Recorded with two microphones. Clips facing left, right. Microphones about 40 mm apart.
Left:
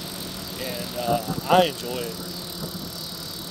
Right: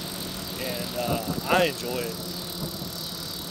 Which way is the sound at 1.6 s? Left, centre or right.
Centre.